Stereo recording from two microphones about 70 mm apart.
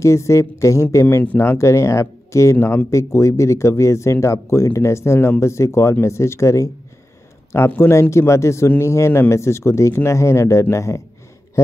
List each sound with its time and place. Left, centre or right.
0.0 s speech: left
7.5 s speech: left